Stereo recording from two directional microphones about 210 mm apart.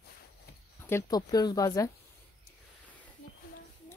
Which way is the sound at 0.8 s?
15° left (ahead or behind).